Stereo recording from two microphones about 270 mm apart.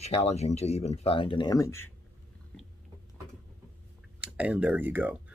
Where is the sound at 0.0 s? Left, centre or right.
Left.